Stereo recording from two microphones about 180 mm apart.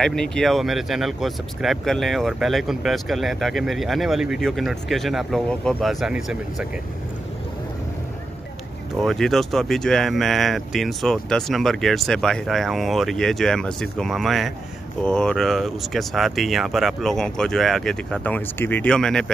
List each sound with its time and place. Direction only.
0.0 s speech: 5° left (ahead or behind)
9.0 s speech: centre (ahead or behind)